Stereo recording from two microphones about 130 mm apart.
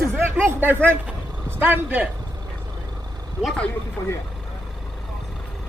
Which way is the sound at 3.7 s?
20° left (ahead or behind).